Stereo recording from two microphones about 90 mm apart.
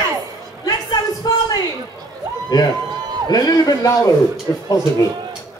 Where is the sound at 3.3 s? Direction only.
45° left (ahead or behind).